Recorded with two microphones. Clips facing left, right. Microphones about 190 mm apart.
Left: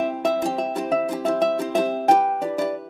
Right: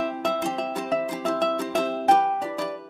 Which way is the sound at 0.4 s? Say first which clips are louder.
Left 4 dB; 35° left (ahead or behind).